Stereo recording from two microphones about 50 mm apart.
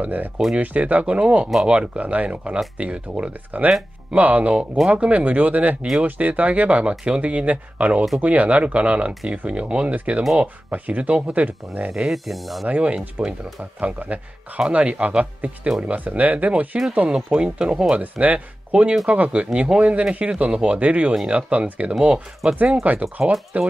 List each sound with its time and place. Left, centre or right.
0.0 s speech: right
11.9 s speech: centre
12.6 s speech: right
18.1 s speech: right
22.0 s speech: centre
22.8 s speech: right